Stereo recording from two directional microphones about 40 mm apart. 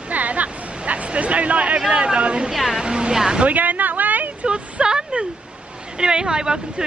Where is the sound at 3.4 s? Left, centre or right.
Right.